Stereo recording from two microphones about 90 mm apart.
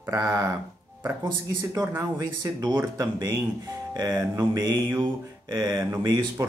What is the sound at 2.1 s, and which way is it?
Speech, 45° right (ahead or behind).